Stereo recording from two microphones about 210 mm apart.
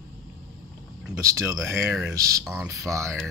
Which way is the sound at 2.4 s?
5° right (ahead or behind).